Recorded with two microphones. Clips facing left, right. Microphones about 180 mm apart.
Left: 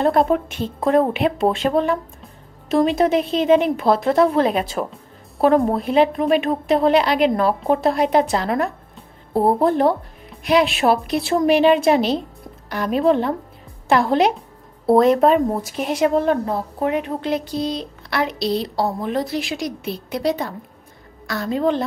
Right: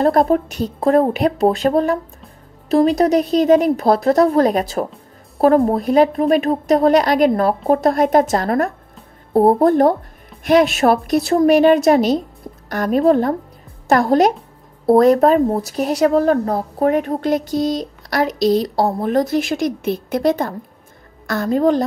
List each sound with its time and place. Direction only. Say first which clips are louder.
0.0 s speech: right 3 dB; 40° right (ahead or behind)
9.3 s speech: right 5 dB; 25° right (ahead or behind)
9.6 s speech: right 4 dB; 45° right (ahead or behind)